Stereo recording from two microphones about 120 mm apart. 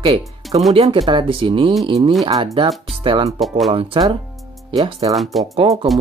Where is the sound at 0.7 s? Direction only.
60° right (ahead or behind).